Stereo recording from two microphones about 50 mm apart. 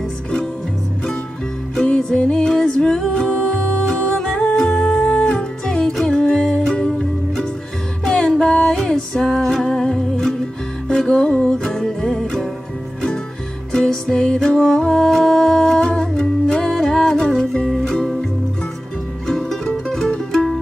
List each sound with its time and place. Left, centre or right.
1.8 s music: centre
8.0 s music: centre
14.0 s music: centre
19.2 s music: centre